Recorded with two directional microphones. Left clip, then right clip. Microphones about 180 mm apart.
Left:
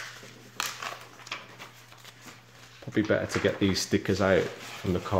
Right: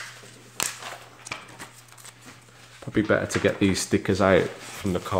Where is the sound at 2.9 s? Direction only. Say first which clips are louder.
Right 4 dB; 15° right (ahead or behind).